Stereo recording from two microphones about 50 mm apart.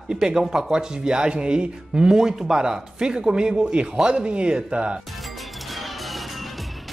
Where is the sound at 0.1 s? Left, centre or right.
Centre.